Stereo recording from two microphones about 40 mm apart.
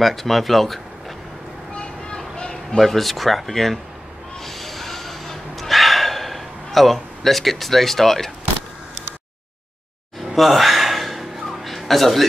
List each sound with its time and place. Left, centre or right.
0.0 s speech: centre
1.7 s vehicle: left
2.1 s a sound: centre
2.8 s speech: centre
4.5 s snort: centre
10.3 s gasp: centre